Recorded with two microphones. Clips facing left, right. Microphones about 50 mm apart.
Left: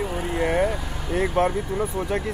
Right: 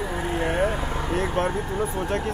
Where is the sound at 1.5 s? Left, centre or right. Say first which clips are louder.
Even; right.